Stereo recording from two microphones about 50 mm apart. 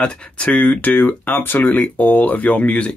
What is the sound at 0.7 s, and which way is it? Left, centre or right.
Speech, left.